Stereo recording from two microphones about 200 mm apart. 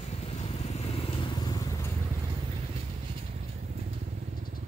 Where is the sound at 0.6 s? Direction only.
35° left (ahead or behind).